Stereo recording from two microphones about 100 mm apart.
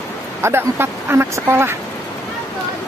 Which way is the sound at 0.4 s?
25° right (ahead or behind).